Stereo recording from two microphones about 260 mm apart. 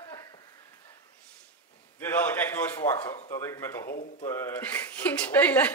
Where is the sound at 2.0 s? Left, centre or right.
Centre.